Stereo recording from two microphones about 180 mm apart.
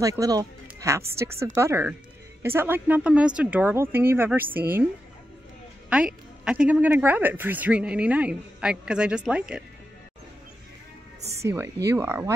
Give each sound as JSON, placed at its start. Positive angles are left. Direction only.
{"t": 0.0, "sound": "speech", "side_deg": -20}
{"t": 6.4, "sound": "speech", "side_deg": -5}
{"t": 11.4, "sound": "speech", "side_deg": -15}